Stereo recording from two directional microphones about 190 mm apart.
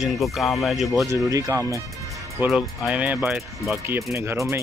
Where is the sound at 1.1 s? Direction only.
15° right (ahead or behind).